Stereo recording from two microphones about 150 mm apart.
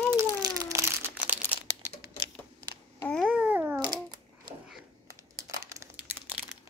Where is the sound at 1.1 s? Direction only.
10° right (ahead or behind).